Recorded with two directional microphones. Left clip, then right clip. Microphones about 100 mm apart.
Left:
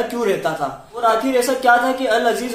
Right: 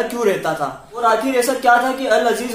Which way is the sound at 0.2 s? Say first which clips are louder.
Right 2 dB; 10° left (ahead or behind).